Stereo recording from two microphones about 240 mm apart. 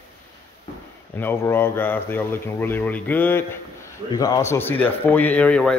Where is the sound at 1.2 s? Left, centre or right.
Centre.